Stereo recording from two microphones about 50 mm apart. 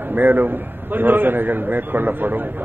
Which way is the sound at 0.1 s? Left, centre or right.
Right.